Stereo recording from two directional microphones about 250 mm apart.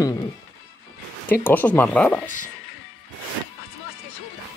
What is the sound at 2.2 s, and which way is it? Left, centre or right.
Speech, left.